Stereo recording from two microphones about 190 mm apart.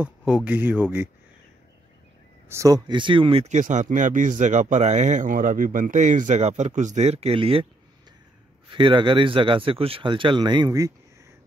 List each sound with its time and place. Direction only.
0.0 s speech: 5° right (ahead or behind)
2.4 s speech: 15° right (ahead or behind)
8.6 s speech: 25° right (ahead or behind)